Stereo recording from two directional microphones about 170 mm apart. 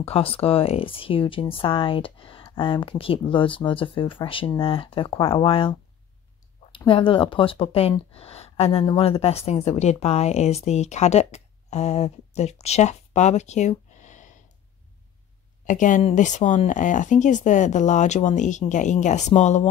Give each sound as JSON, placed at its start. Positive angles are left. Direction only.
{"t": 0.0, "sound": "speech", "side_deg": 35}
{"t": 6.9, "sound": "speech", "side_deg": 30}
{"t": 15.6, "sound": "speech", "side_deg": 50}